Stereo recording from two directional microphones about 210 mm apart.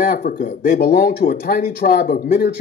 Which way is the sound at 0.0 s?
40° left (ahead or behind).